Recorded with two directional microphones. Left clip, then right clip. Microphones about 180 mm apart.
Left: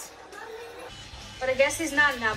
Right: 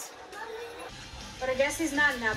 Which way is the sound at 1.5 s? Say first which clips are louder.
Left 4 dB; centre (ahead or behind).